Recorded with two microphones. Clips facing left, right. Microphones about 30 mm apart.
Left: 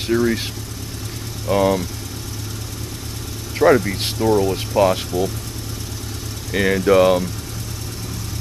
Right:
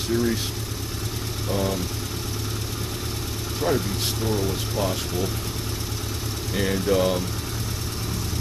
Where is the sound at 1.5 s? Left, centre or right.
Left.